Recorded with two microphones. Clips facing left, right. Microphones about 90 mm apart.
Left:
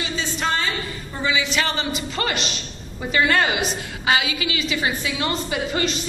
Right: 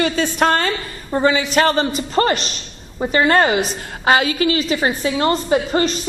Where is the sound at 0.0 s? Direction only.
55° right (ahead or behind).